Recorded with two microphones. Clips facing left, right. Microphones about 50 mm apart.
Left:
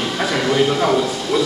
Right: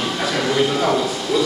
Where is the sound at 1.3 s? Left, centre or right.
Left.